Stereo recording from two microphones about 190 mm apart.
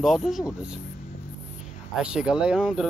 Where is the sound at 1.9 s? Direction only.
5° right (ahead or behind).